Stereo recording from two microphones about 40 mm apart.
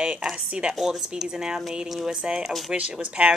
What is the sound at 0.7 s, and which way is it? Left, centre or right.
Speech, centre.